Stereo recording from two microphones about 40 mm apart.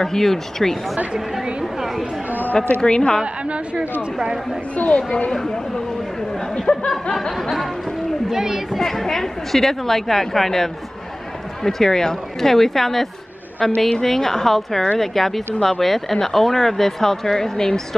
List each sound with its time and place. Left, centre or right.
0.0 s speech: centre
1.4 s a woman's voice: centre
2.6 s a woman's voice: centre
4.7 s a woman's voice: left
5.3 s speech: centre
6.7 s a woman's voice: centre
7.2 s speech: centre
8.3 s a woman's voice: centre
8.7 s speech: centre
13.7 s a woman's voice: left
14.0 s speech: centre